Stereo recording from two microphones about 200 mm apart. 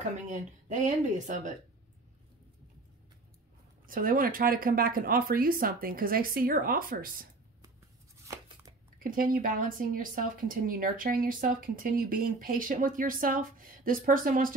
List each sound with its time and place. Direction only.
0.7 s speech: 40° right (ahead or behind)
3.8 s a woman's voice: 45° right (ahead or behind)
9.0 s a woman's voice: 45° right (ahead or behind)